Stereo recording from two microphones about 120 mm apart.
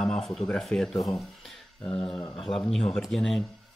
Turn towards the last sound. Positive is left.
turn(degrees=0)  # may be behind; listen again after turning